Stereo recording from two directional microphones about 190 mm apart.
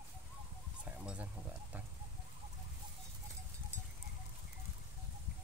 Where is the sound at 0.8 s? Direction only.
5° right (ahead or behind).